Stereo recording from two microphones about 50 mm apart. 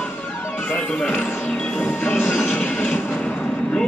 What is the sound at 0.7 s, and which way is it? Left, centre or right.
Music, left.